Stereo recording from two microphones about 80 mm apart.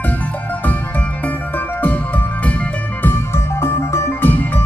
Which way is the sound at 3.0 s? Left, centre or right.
Left.